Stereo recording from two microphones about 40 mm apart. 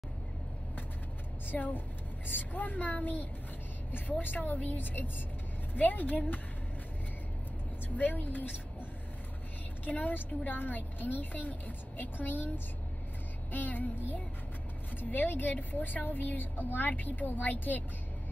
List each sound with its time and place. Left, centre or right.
1.5 s a woman's voice: left
4.4 s a woman's voice: left
7.9 s a woman's voice: left
9.8 s a woman's voice: left
13.5 s child singing: left
15.0 s a woman's voice: left